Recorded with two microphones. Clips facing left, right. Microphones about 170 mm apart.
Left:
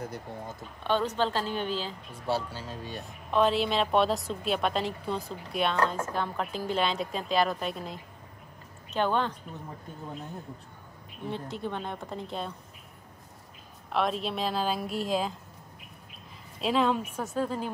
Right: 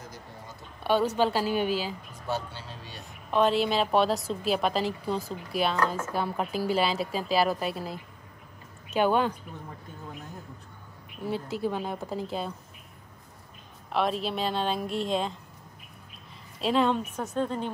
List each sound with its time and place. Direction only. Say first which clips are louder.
0.0 s a sound: left 7 dB; 60° left (ahead or behind)
0.8 s a woman's voice: right 3 dB; 10° right (ahead or behind)
2.2 s speech: left 2 dB; 35° left (ahead or behind)
3.3 s a woman's voice: right 1 dB; centre (ahead or behind)
11.2 s a woman's voice: right 4 dB; 5° right (ahead or behind)
13.9 s a woman's voice: right 1 dB; centre (ahead or behind)
16.6 s a woman's voice: right 1 dB; centre (ahead or behind)